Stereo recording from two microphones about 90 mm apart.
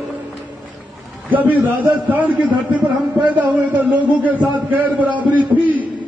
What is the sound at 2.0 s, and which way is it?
A man's voice, 20° right (ahead or behind).